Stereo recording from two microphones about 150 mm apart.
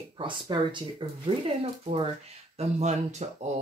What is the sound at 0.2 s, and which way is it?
Speech, 30° right (ahead or behind).